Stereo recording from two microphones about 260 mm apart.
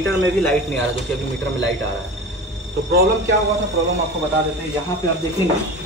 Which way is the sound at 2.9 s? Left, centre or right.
Right.